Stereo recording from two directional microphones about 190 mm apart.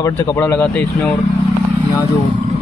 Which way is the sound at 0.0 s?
15° left (ahead or behind).